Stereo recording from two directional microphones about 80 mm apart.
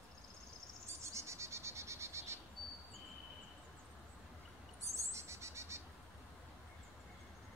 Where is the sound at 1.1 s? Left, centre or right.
Right.